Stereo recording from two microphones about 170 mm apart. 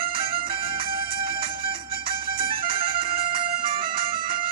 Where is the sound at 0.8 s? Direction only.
30° right (ahead or behind).